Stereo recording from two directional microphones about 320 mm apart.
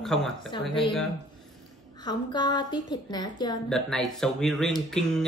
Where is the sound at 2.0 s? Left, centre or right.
Centre.